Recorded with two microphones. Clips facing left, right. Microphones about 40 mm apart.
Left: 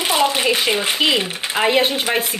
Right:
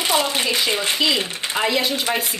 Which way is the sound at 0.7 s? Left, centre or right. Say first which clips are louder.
Left 2 dB; centre.